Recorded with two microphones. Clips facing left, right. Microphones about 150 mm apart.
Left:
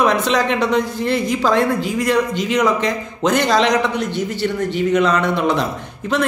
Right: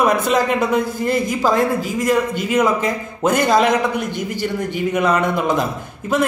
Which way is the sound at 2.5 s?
5° right (ahead or behind).